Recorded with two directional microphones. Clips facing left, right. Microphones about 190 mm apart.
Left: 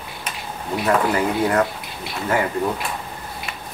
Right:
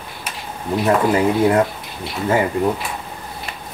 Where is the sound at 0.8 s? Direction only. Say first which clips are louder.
Right 3 dB; 25° right (ahead or behind).